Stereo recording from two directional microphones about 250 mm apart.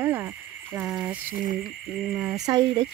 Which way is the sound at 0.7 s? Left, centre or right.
Centre.